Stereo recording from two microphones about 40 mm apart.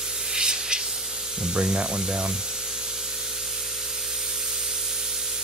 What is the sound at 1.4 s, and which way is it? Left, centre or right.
Speech, centre.